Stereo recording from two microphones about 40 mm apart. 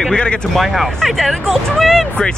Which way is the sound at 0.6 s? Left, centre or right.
Centre.